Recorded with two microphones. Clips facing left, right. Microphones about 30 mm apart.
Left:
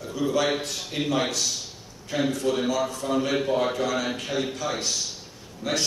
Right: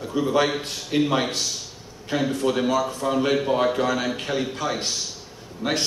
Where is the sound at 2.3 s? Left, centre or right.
Right.